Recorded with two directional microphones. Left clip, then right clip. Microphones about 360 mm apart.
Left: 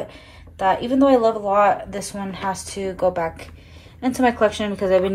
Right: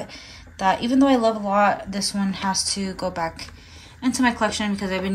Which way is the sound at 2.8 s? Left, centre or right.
Centre.